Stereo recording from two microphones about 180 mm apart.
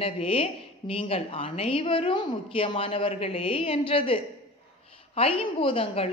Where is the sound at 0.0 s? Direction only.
30° left (ahead or behind).